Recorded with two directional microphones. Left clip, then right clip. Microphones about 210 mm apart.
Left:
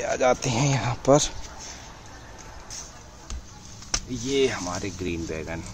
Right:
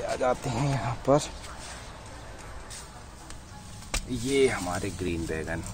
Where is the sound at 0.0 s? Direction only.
35° left (ahead or behind).